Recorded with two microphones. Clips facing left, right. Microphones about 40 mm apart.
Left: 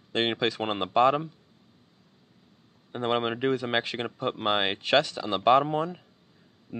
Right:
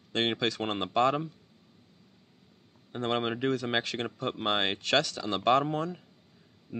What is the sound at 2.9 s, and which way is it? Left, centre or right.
Speech, centre.